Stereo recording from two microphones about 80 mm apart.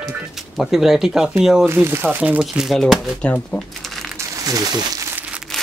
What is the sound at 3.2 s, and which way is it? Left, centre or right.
Speech, centre.